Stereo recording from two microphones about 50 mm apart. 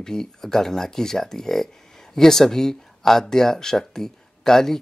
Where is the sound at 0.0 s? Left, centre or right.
Centre.